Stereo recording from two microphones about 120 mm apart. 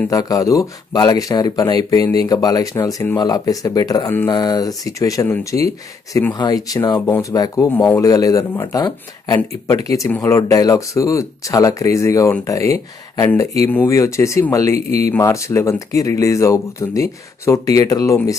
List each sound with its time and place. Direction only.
0.1 s speech: 30° left (ahead or behind)
7.7 s speech: 15° left (ahead or behind)
8.0 s speech: 30° left (ahead or behind)